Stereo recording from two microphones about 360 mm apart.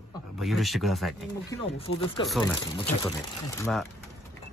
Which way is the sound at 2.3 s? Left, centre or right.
Centre.